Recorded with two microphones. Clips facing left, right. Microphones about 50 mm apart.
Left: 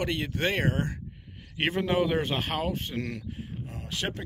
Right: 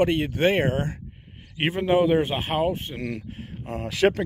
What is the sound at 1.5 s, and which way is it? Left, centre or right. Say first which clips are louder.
Speech: right 5 dB; centre.